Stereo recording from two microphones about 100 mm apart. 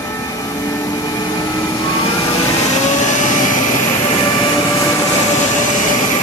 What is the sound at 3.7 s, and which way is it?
Vehicle, 35° left (ahead or behind).